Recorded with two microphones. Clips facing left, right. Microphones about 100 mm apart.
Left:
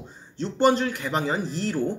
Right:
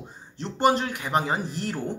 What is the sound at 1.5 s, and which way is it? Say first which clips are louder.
Speech: left 3 dB; 55° right (ahead or behind).